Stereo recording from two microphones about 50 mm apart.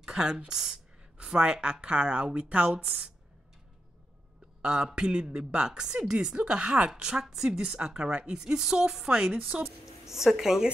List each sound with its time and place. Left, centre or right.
0.0 s a sound: centre
1.2 s a woman's voice: centre
4.6 s a woman's voice: centre